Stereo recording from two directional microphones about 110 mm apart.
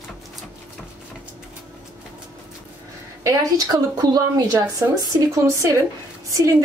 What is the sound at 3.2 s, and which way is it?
A woman's voice, 35° right (ahead or behind).